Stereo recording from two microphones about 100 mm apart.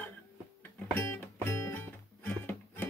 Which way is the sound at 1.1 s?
25° left (ahead or behind).